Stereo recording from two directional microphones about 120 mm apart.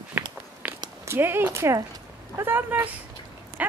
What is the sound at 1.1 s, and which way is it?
A woman's voice, 20° right (ahead or behind).